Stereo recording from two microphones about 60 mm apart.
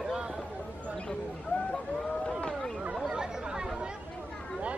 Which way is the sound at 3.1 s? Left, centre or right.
Centre.